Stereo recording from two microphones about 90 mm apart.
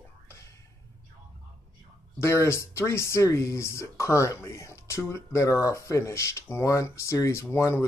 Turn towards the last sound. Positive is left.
turn(degrees=30)  # may be behind; listen again after turning